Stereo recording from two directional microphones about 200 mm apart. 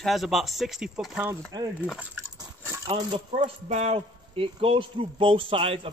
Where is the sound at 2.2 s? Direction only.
15° right (ahead or behind).